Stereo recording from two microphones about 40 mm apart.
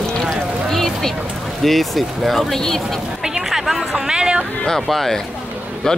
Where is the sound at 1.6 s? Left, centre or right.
Centre.